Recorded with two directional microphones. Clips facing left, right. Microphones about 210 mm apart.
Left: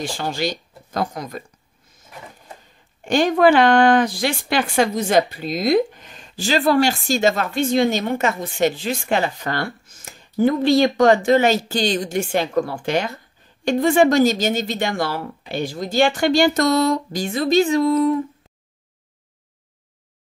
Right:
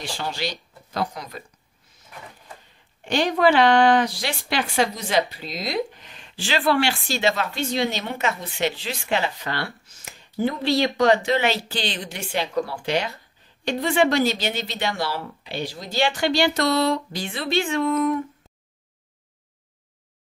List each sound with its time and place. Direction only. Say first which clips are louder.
0.0 s speech: left 5 dB; 50° left (ahead or behind)
3.0 s speech: left 5 dB; 45° left (ahead or behind)